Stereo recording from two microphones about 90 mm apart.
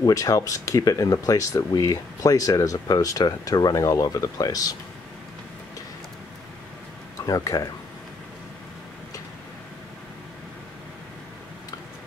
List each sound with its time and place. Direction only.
0.0 s speech: 40° left (ahead or behind)
7.2 s speech: 40° left (ahead or behind)